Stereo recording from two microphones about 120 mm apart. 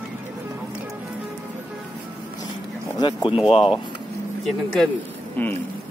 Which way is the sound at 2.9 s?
40° left (ahead or behind).